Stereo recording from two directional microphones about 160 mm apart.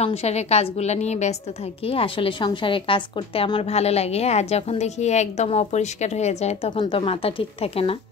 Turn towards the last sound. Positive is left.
turn(degrees=35)  # may be behind; listen again after turning